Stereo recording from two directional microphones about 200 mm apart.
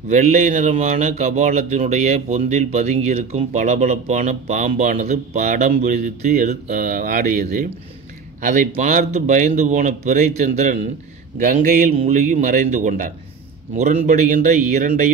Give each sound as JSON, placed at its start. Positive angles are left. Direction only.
{"t": 0.1, "sound": "a man's voice", "side_deg": -40}
{"t": 11.9, "sound": "a man's voice", "side_deg": -30}
{"t": 12.3, "sound": "speech", "side_deg": -40}